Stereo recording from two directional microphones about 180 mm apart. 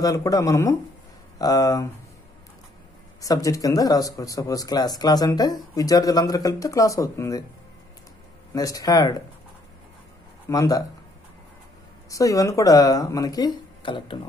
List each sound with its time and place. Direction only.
0.0 s speech: 20° left (ahead or behind)
3.2 s speech: 20° left (ahead or behind)
8.5 s speech: 20° left (ahead or behind)
10.5 s speech: 20° left (ahead or behind)
12.1 s speech: 20° left (ahead or behind)